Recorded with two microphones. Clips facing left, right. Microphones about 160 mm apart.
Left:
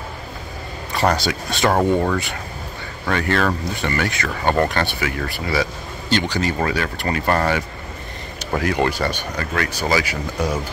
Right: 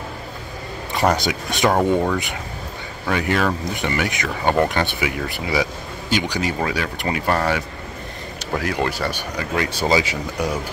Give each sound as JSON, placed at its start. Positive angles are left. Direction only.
{"t": 1.1, "sound": "speech", "side_deg": -15}
{"t": 1.7, "sound": "speech", "side_deg": 0}
{"t": 9.6, "sound": "speech", "side_deg": -25}